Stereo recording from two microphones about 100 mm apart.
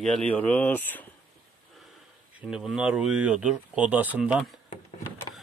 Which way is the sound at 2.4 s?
5° right (ahead or behind).